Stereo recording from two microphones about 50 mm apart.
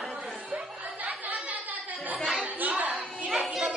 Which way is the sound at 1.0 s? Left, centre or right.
Right.